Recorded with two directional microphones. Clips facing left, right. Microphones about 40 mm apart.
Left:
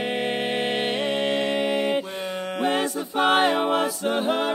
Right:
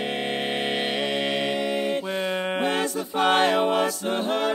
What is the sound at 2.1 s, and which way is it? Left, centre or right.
Music, right.